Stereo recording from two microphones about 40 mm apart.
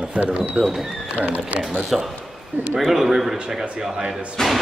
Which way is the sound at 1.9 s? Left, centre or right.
Centre.